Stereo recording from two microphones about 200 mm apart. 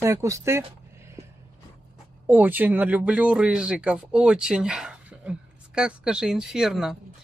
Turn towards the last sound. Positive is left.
turn(degrees=-5)  # may be behind; listen again after turning